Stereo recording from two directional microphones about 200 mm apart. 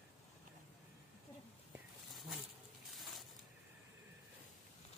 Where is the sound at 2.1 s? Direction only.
Centre (ahead or behind).